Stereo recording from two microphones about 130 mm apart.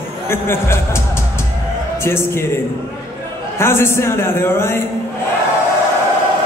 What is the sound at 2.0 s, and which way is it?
Speech, 20° left (ahead or behind).